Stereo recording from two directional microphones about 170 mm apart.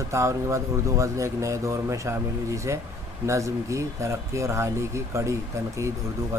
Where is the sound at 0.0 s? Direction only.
15° right (ahead or behind).